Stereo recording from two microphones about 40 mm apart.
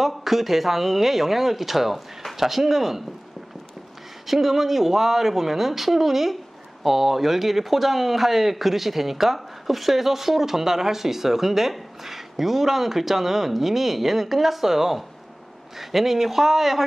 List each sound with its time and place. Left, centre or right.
0.0 s speech: centre
4.3 s speech: centre